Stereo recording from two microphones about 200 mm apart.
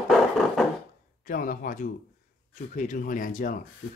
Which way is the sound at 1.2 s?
45° left (ahead or behind).